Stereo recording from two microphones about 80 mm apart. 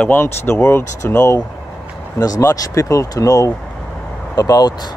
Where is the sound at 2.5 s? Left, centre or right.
Left.